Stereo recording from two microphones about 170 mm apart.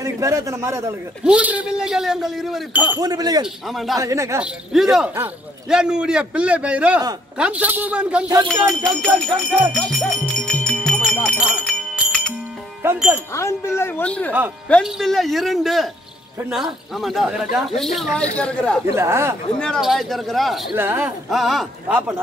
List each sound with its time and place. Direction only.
0.0 s a man's voice: 20° right (ahead or behind)
3.0 s speech: 20° right (ahead or behind)
3.4 s speech: centre (ahead or behind)
4.0 s a man's voice: 20° right (ahead or behind)
4.4 s a man's voice: 5° right (ahead or behind)
9.8 s music: centre (ahead or behind)
11.3 s bell: 5° right (ahead or behind)
12.8 s a man's voice: 10° right (ahead or behind)
13.3 s speech: 15° left (ahead or behind)
18.9 s a man's voice: 15° right (ahead or behind)
19.6 s speech: centre (ahead or behind)
20.7 s a man's voice: 15° right (ahead or behind)
21.3 s speech: centre (ahead or behind)